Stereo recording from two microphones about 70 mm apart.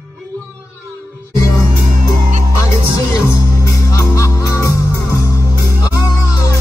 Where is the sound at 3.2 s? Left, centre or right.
Left.